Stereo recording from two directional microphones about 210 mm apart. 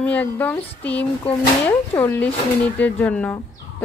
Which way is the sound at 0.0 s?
5° left (ahead or behind).